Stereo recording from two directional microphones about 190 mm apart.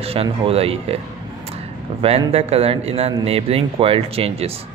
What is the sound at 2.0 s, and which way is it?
Speech, 30° right (ahead or behind).